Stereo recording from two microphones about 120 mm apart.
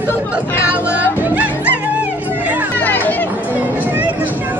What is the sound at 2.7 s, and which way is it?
Music, 15° left (ahead or behind).